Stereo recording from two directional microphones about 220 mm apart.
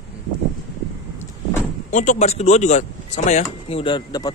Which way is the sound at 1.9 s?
35° left (ahead or behind).